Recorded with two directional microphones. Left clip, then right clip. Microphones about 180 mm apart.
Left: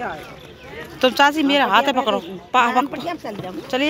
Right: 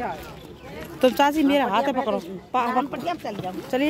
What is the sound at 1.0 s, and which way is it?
Speech, 20° right (ahead or behind).